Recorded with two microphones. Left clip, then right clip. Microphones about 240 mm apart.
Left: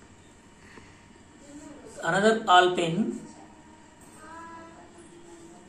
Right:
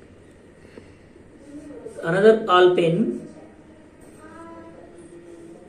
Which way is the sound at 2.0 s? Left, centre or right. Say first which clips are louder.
Right 7 dB; left.